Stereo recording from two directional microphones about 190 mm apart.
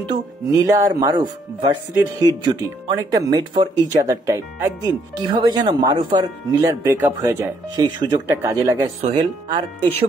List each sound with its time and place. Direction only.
0.6 s speech: 20° right (ahead or behind)